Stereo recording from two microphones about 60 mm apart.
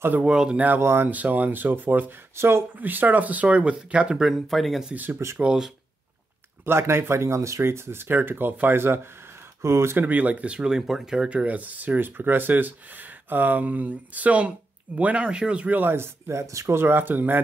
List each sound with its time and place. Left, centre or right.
0.2 s speech: centre
0.7 s speech: right
1.1 s speech: right
2.3 s speech: right
2.8 s speech: right
4.1 s speech: centre
6.6 s speech: right
9.6 s speech: right
9.9 s speech: right
10.8 s speech: centre
11.4 s speech: right
15.8 s speech: right
16.7 s speech: right